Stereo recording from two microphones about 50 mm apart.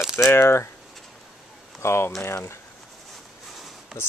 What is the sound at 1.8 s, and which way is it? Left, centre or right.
Speech, left.